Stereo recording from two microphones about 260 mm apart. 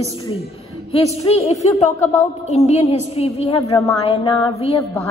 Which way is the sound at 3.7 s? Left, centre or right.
Centre.